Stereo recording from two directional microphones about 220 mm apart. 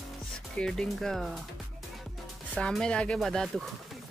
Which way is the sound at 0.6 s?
Centre (ahead or behind).